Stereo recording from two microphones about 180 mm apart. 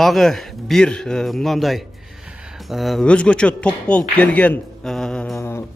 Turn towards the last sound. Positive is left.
turn(degrees=0)  # may be behind; listen again after turning